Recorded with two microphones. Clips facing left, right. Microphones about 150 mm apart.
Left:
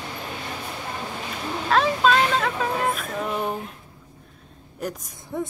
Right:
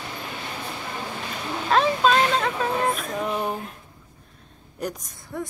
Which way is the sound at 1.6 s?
Centre (ahead or behind).